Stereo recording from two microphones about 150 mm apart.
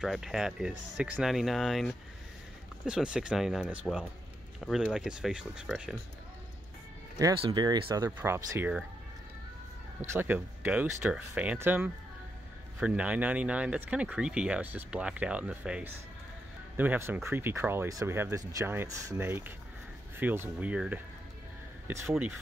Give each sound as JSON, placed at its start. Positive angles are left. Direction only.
{"t": 0.0, "sound": "speech", "side_deg": 0}
{"t": 7.3, "sound": "speech", "side_deg": -30}
{"t": 8.2, "sound": "speech", "side_deg": -15}
{"t": 10.1, "sound": "speech", "side_deg": -10}